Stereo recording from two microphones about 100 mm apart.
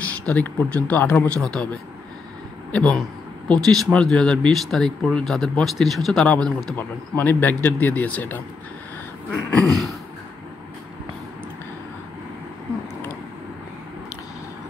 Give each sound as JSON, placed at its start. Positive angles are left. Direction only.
{"t": 0.3, "sound": "speech", "side_deg": 15}